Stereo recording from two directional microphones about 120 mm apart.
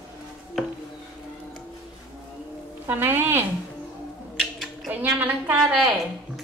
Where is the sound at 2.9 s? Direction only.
20° right (ahead or behind).